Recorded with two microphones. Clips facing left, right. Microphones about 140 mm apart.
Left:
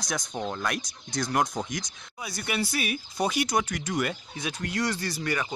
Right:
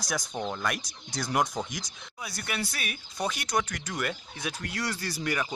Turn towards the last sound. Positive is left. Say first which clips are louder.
# left 1 dB
turn(degrees=-10)  # may be behind; listen again after turning